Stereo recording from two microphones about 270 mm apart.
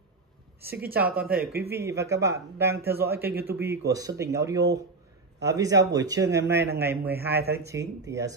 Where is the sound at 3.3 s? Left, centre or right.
Right.